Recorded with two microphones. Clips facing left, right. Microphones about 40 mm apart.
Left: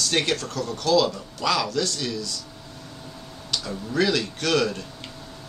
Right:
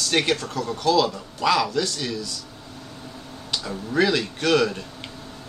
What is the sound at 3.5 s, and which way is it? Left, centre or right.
Speech, centre.